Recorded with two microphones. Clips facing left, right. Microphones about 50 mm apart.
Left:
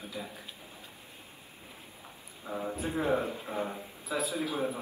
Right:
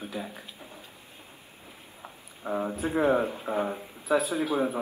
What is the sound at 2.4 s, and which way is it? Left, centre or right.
Speech, right.